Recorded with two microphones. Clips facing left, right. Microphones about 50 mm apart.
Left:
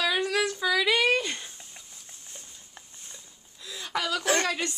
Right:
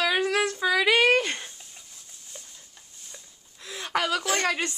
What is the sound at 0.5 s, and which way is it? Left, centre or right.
Speech, right.